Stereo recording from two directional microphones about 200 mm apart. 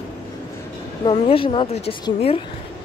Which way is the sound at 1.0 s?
25° left (ahead or behind).